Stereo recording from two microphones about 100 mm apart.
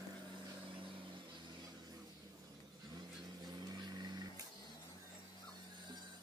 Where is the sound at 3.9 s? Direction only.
45° right (ahead or behind).